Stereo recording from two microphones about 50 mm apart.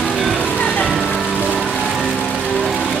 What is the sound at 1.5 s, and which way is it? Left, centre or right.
Music, centre.